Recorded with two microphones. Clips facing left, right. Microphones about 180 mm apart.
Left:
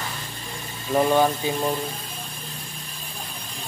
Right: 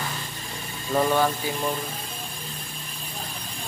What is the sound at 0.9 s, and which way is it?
Speech, 15° left (ahead or behind).